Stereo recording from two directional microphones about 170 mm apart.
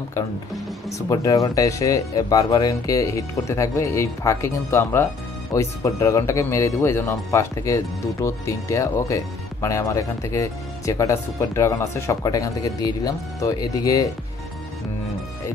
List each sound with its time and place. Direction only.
0.8 s speech: 20° left (ahead or behind)